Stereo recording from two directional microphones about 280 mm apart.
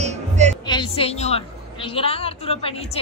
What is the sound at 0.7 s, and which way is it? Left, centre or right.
A woman's voice, centre.